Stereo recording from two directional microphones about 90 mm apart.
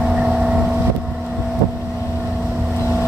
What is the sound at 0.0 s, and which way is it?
Vehicle, 5° right (ahead or behind).